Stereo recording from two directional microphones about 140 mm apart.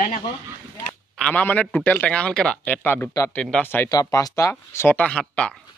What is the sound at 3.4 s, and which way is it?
Speech, 5° left (ahead or behind).